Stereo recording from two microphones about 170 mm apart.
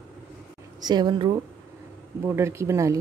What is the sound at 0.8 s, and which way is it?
Speech, 25° right (ahead or behind).